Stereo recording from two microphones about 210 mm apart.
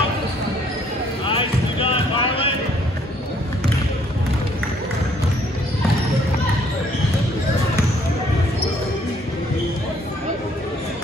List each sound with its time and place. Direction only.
1.2 s vehicle: 25° left (ahead or behind)